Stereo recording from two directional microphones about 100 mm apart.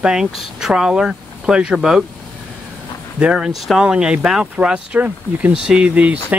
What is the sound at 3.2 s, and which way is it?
Speech, 10° right (ahead or behind).